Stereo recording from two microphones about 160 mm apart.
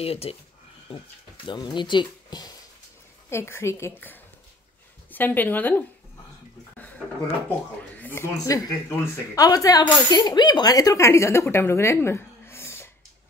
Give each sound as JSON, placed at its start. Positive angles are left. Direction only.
{"t": 0.0, "sound": "speech", "side_deg": 40}
{"t": 1.5, "sound": "speech", "side_deg": 30}
{"t": 3.3, "sound": "speech", "side_deg": 15}
{"t": 7.4, "sound": "speech", "side_deg": 10}